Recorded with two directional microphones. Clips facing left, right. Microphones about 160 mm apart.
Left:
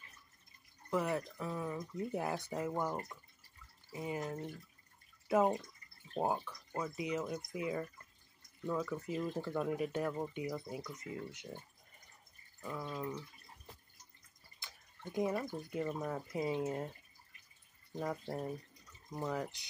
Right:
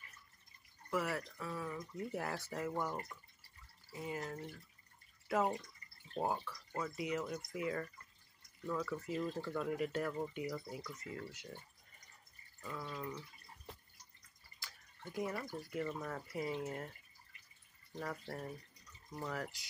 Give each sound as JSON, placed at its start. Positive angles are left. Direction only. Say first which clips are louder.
{"t": 0.8, "sound": "speech", "louder": "left 3 dB", "side_deg": 20}
{"t": 12.6, "sound": "speech", "louder": "left 3 dB", "side_deg": 15}
{"t": 14.6, "sound": "speech", "louder": "left 3 dB", "side_deg": 20}
{"t": 17.9, "sound": "speech", "louder": "left 5 dB", "side_deg": 15}